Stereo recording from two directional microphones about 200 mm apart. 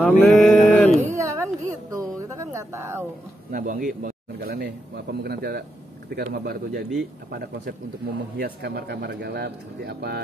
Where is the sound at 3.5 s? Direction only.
40° right (ahead or behind).